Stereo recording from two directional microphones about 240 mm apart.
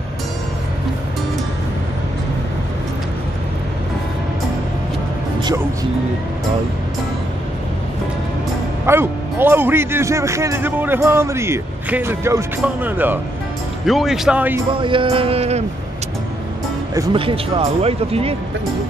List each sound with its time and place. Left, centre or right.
8.8 s a man's voice: centre
14.8 s speech: right
16.9 s speech: right